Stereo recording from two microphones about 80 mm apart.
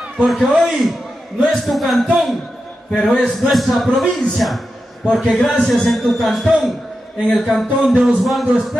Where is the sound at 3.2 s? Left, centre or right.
Centre.